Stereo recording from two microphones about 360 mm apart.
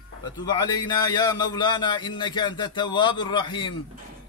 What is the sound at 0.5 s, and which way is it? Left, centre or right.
A man's voice, centre.